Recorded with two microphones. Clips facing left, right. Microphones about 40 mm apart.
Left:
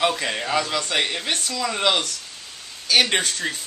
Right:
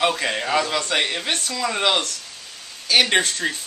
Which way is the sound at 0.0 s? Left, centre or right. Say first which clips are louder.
Right 1 dB; centre.